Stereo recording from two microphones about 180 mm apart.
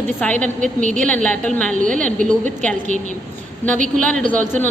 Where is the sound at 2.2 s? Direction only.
40° right (ahead or behind).